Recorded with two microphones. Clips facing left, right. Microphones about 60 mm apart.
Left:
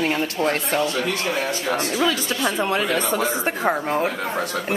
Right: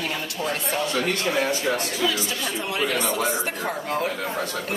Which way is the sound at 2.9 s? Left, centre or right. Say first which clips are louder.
Left 2 dB; left.